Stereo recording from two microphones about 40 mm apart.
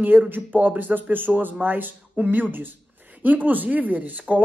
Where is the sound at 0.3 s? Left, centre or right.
Right.